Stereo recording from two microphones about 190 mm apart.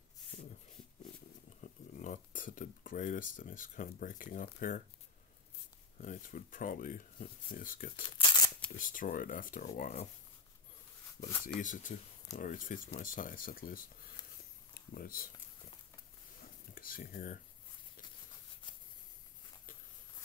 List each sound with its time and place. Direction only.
1.6 s speech: 40° left (ahead or behind)
5.9 s speech: 45° left (ahead or behind)
8.2 s tearing: 25° left (ahead or behind)
8.7 s speech: 45° left (ahead or behind)
11.6 s speech: 40° left (ahead or behind)
14.7 s a sound: 50° left (ahead or behind)
16.7 s speech: 50° left (ahead or behind)